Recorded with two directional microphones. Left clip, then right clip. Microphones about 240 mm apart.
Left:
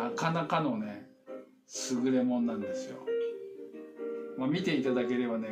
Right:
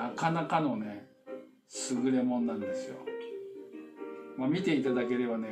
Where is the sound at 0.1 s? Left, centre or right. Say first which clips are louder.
Right 1 dB; centre.